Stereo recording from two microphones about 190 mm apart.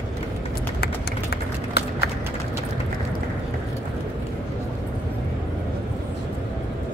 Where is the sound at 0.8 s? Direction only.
60° left (ahead or behind).